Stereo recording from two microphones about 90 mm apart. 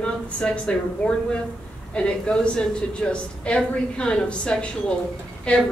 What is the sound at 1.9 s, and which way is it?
A woman's voice, 10° left (ahead or behind).